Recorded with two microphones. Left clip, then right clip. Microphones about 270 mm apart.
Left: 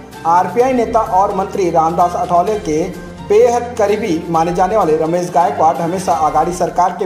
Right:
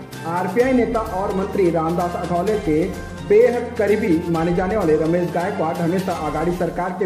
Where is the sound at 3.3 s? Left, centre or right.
Left.